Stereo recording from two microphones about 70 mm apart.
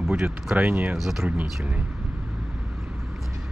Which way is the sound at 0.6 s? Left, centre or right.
Right.